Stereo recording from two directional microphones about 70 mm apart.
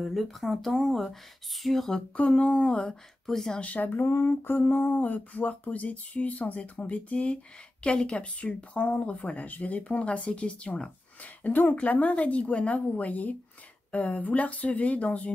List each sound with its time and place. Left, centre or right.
0.0 s speech: centre
2.1 s a woman's voice: left
3.6 s speech: left
4.1 s speech: left